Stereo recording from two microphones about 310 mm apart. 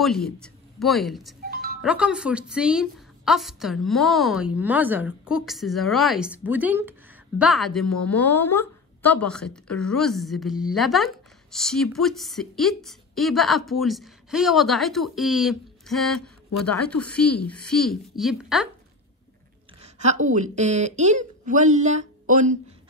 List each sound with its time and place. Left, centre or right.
0.0 s a woman's voice: centre
19.8 s a woman's voice: right